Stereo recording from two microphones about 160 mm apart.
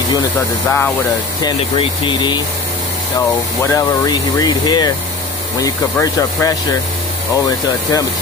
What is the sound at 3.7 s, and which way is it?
Speech, 25° left (ahead or behind).